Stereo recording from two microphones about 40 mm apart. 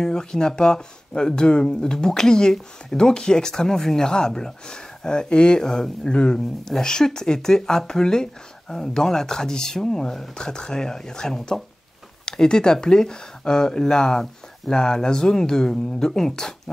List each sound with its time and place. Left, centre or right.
0.0 s speech: centre